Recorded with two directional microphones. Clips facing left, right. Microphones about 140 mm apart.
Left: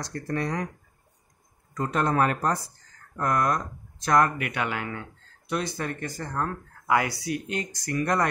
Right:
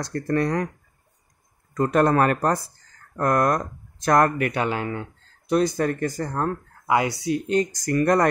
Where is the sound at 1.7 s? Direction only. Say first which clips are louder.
Right 6 dB; 55° right (ahead or behind); by 5.0 s 30° right (ahead or behind).